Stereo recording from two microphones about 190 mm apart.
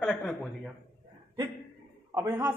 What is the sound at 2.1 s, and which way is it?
Speech, 15° right (ahead or behind).